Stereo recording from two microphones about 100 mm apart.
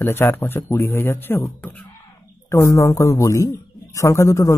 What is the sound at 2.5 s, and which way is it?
Speech, 30° left (ahead or behind).